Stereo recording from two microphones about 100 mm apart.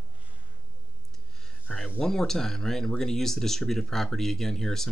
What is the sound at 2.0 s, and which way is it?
Speech, 5° left (ahead or behind).